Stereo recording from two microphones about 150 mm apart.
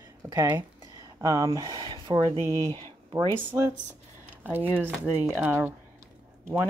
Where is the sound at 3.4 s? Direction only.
20° right (ahead or behind).